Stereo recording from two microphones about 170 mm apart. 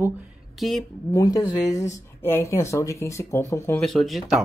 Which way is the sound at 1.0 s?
20° left (ahead or behind).